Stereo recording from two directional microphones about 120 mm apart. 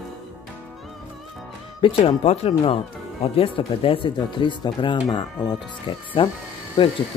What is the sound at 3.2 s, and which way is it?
Speech, 50° left (ahead or behind).